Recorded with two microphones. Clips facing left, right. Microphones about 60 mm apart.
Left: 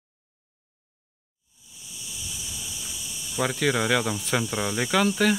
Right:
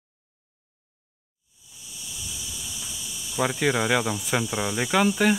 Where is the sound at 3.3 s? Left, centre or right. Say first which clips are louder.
Right 1 dB; centre.